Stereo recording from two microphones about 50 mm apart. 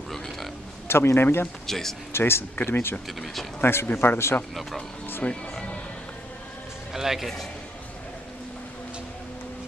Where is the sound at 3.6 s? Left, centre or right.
Left.